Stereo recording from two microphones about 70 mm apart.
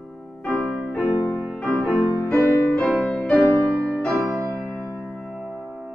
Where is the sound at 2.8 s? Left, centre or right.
Centre.